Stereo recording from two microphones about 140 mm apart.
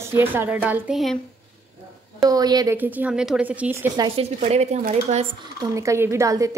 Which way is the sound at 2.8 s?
10° right (ahead or behind).